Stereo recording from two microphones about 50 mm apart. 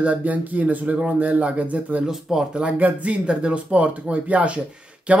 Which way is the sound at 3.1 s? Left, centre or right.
Centre.